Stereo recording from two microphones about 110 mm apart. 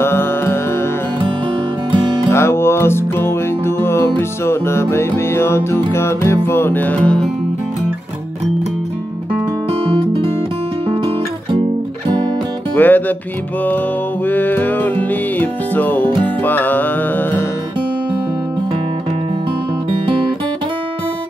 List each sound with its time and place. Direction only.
0.0 s music: 20° left (ahead or behind)
2.3 s music: 20° left (ahead or behind)
12.7 s music: 15° left (ahead or behind)
14.2 s music: 15° left (ahead or behind)